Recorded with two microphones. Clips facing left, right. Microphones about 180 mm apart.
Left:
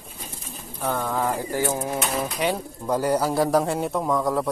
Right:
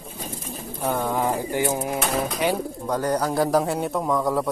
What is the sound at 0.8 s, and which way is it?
Bird, 15° right (ahead or behind).